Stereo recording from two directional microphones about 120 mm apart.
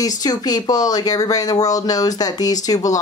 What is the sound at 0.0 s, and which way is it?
Speech, 30° left (ahead or behind).